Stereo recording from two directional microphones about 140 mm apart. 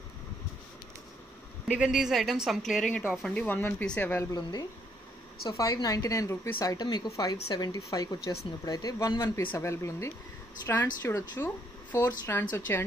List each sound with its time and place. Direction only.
1.7 s a woman's voice: 5° right (ahead or behind)
3.4 s speech: 15° left (ahead or behind)
4.3 s speech: 30° left (ahead or behind)